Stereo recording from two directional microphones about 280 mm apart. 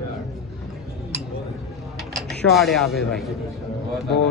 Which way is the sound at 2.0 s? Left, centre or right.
Centre.